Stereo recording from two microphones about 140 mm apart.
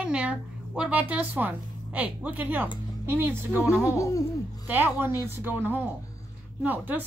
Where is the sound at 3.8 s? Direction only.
20° left (ahead or behind).